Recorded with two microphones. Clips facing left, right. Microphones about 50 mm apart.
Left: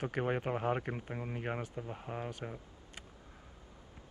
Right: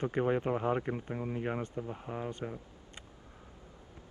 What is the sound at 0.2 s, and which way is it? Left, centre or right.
Speech, centre.